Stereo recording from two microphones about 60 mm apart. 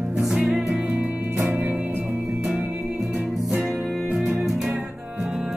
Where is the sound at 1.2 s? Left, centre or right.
Right.